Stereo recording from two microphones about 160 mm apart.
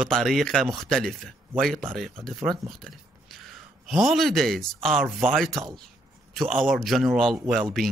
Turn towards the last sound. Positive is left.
turn(degrees=0)  # may be behind; listen again after turning